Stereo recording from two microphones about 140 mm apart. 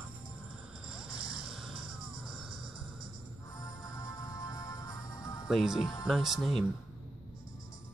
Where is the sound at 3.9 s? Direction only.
25° left (ahead or behind).